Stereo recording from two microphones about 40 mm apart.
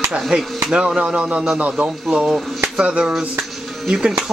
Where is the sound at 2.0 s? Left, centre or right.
Centre.